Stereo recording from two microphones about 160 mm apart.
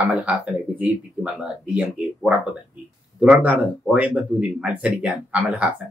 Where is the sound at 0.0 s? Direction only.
5° right (ahead or behind).